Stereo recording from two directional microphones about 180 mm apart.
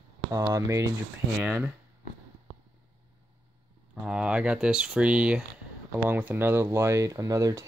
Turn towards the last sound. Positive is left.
turn(degrees=-20)  # may be behind; listen again after turning